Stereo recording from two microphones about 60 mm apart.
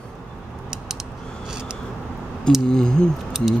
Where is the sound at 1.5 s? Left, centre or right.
Centre.